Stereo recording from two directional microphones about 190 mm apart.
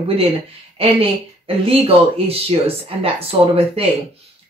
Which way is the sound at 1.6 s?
30° right (ahead or behind).